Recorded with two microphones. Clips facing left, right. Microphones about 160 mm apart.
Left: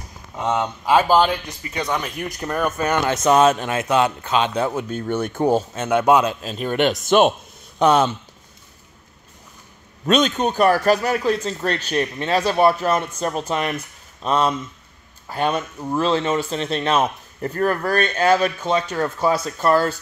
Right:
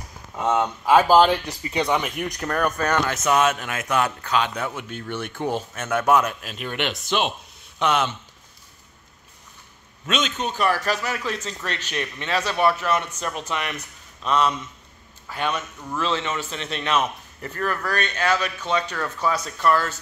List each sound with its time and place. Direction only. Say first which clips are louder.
0.4 s speech: even; 5° right (ahead or behind)
1.6 s speech: right 3 dB; 25° right (ahead or behind)
1.9 s speech: right 1 dB; 5° right (ahead or behind)
3.1 s speech: left 5 dB; 35° left (ahead or behind)
4.6 s a man's voice: left 7 dB; 40° left (ahead or behind)
5.8 s a man's voice: left 1 dB; 20° left (ahead or behind); by 7.3 s 50° left (ahead or behind)
7.8 s a man's voice: left 6 dB; 35° left (ahead or behind)
10.0 s a man's voice: left 8 dB; 40° left (ahead or behind)